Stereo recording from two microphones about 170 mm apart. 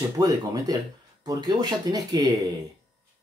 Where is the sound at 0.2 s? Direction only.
20° right (ahead or behind).